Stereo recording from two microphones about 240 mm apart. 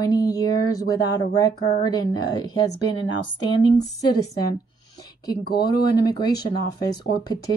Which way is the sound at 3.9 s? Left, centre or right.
Centre.